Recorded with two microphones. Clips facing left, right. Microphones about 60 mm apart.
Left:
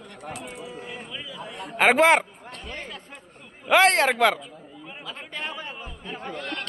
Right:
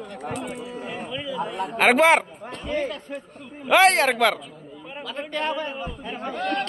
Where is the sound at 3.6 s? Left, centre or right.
Centre.